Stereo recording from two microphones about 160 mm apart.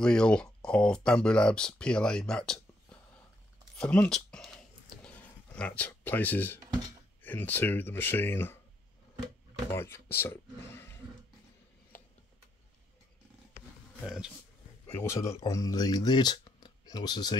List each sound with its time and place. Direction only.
0.0 s speech: 5° left (ahead or behind)
3.7 s a sound: 5° left (ahead or behind)
7.2 s speech: 10° left (ahead or behind)
9.7 s speech: 15° left (ahead or behind)
14.0 s speech: centre (ahead or behind)
14.9 s speech: 15° left (ahead or behind)